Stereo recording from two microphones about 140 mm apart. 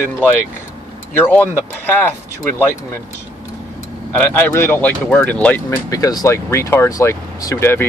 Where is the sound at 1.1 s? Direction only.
15° left (ahead or behind).